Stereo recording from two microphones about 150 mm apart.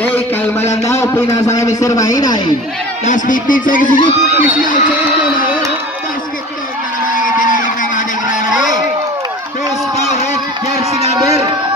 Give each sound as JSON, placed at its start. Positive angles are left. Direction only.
{"t": 0.0, "sound": "a man's voice", "side_deg": 15}
{"t": 3.1, "sound": "speech", "side_deg": 60}
{"t": 7.2, "sound": "music", "side_deg": 60}
{"t": 9.9, "sound": "a sound", "side_deg": 50}